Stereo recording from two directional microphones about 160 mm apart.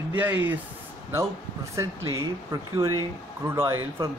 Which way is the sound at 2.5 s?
20° right (ahead or behind).